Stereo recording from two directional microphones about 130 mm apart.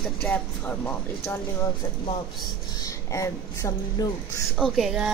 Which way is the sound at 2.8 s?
25° left (ahead or behind).